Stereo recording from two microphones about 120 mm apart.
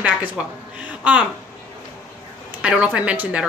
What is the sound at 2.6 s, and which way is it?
Speech, 10° right (ahead or behind).